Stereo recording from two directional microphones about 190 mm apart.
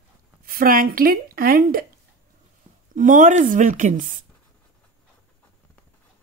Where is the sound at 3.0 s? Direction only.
40° right (ahead or behind).